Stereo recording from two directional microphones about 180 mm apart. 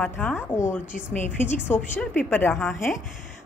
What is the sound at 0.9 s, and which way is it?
Speech, 45° left (ahead or behind).